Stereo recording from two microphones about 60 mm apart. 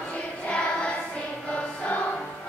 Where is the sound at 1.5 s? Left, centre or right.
Left.